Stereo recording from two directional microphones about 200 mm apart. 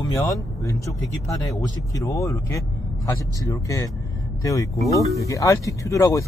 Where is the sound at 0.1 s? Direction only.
15° left (ahead or behind).